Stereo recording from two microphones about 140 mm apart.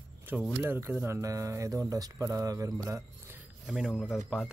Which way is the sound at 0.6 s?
15° right (ahead or behind).